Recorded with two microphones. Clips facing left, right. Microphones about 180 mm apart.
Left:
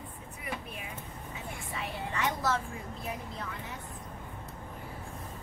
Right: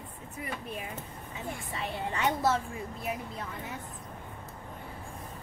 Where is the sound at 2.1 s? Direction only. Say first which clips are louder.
Right 3 dB; 30° right (ahead or behind).